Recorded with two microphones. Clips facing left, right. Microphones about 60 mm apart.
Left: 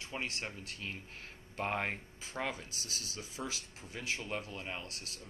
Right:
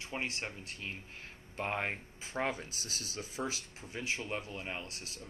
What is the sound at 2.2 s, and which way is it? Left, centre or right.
Speech, right.